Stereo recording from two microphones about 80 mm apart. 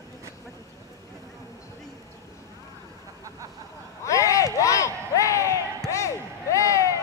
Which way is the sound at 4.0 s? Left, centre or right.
Left.